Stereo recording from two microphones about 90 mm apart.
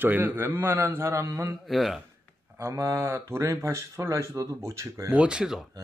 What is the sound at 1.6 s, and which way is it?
Speech, centre (ahead or behind).